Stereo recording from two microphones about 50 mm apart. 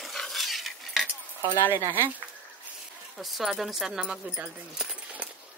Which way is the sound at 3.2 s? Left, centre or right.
Centre.